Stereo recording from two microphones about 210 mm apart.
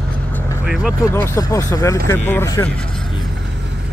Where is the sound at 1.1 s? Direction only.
15° left (ahead or behind).